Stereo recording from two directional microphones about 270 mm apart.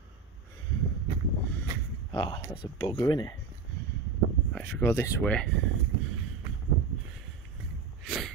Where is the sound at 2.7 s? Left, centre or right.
Centre.